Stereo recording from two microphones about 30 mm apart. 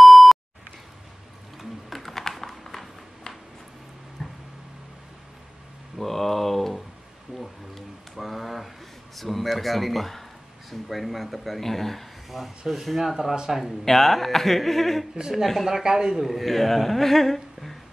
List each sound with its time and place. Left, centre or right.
0.0 s beep: centre
1.6 s typing: centre
2.3 s a sound: centre
4.2 s a sound: centre
5.9 s a sound: centre
10.7 s speech: centre
12.3 s speech: centre
13.8 s speech: centre
15.7 s a man's voice: right
16.2 s speech: centre